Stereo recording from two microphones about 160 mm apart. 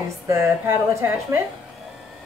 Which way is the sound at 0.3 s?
15° right (ahead or behind).